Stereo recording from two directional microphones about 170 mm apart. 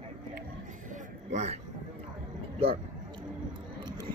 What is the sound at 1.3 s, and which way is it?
Speech, 40° right (ahead or behind).